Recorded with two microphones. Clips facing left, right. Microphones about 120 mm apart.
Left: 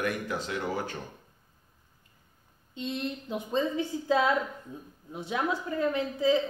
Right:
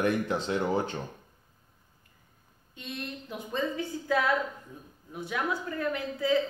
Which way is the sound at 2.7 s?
25° left (ahead or behind).